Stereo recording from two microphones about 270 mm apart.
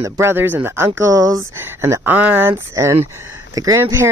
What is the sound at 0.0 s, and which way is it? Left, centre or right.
Speech, centre.